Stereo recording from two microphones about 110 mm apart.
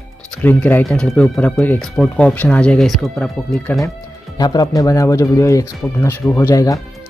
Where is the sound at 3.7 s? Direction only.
20° left (ahead or behind).